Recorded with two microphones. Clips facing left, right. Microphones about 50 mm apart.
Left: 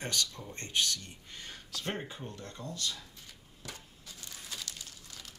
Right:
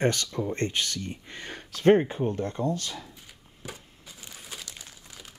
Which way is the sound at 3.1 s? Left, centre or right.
Centre.